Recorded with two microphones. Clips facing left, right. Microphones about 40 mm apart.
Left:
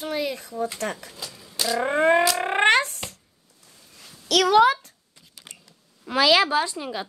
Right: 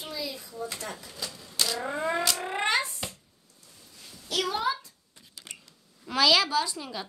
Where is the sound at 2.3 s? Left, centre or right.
Left.